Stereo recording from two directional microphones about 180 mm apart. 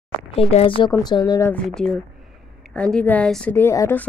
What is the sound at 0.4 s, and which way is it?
Speech, 30° left (ahead or behind).